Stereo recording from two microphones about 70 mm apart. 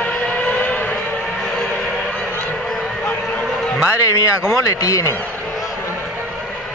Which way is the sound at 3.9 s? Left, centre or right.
Left.